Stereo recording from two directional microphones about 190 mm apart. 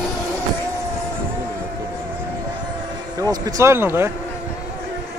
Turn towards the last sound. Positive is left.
turn(degrees=-10)  # may be behind; listen again after turning